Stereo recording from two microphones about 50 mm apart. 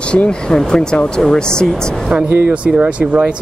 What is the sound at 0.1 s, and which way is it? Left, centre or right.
Speech, centre.